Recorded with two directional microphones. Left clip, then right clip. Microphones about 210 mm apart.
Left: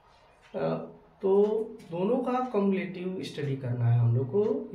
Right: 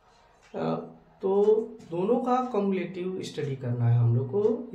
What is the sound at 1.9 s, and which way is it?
A man's voice, 30° right (ahead or behind).